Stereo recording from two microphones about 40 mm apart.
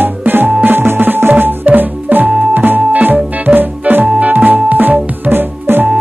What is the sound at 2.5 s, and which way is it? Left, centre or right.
Music, right.